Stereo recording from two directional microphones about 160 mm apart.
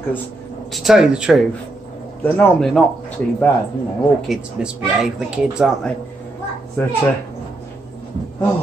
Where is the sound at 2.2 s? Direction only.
10° left (ahead or behind).